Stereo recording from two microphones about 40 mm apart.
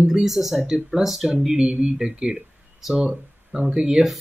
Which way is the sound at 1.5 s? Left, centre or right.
Right.